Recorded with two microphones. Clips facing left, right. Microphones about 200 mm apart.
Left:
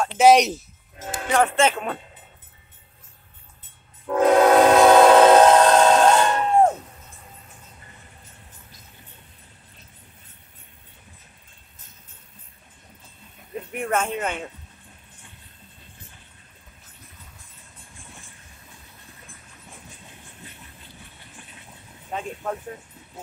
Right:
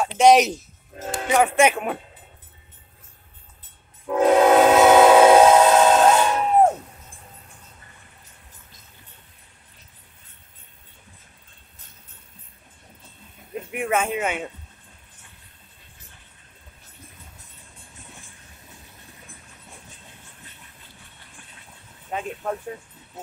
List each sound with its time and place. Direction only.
0.2 s a man's voice: centre (ahead or behind)
1.3 s speech: 10° right (ahead or behind)
4.1 s train: 5° right (ahead or behind)
13.7 s speech: 5° right (ahead or behind)